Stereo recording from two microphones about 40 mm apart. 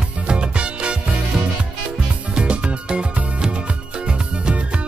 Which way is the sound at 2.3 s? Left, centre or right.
Right.